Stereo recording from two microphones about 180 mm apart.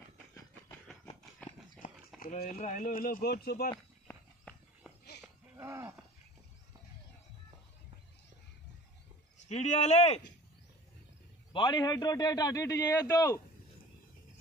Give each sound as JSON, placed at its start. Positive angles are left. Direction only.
{"t": 2.1, "sound": "clip-clop", "side_deg": 55}
{"t": 2.5, "sound": "speech", "side_deg": 45}
{"t": 5.6, "sound": "a sound", "side_deg": -15}
{"t": 9.5, "sound": "speech", "side_deg": 40}
{"t": 11.5, "sound": "a man's voice", "side_deg": 25}